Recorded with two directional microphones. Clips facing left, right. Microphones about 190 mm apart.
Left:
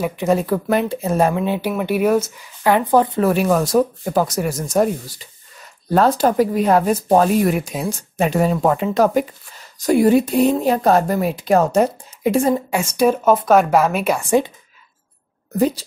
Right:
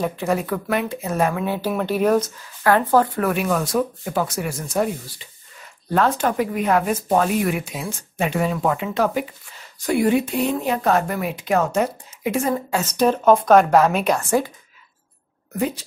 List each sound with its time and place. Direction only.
0.0 s speech: 20° left (ahead or behind)
1.7 s speech: 10° left (ahead or behind)
3.3 s speech: 35° left (ahead or behind)
12.7 s speech: 10° left (ahead or behind)
15.5 s speech: 35° left (ahead or behind)